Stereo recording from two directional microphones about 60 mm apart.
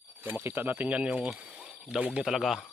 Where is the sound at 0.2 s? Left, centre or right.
Right.